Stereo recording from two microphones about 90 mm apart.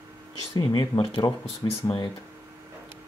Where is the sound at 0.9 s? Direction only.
75° left (ahead or behind); by 2.0 s 60° left (ahead or behind).